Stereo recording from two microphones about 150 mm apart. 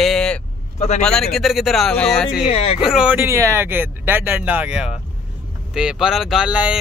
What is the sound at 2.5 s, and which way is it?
Speech, 35° left (ahead or behind).